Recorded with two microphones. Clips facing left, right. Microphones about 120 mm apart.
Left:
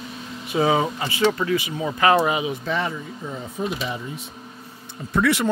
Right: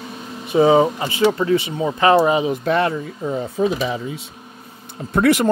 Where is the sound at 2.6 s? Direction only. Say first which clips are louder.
Right 7 dB; 60° right (ahead or behind).